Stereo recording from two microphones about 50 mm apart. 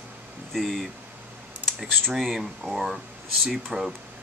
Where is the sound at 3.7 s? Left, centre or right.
Centre.